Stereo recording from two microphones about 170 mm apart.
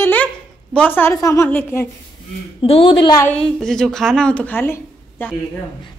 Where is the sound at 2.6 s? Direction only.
35° left (ahead or behind).